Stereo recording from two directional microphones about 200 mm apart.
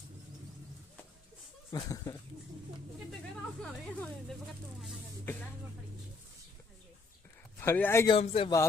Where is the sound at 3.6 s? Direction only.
5° left (ahead or behind).